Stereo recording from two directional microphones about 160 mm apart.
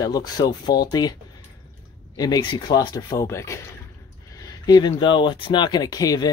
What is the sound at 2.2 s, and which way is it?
Speech, 25° left (ahead or behind).